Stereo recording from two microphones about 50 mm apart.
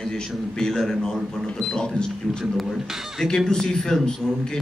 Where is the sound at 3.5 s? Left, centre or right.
Centre.